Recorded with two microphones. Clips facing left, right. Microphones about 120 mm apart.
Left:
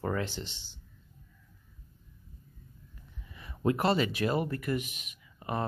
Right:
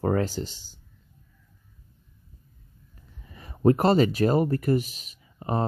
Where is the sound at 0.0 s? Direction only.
40° right (ahead or behind).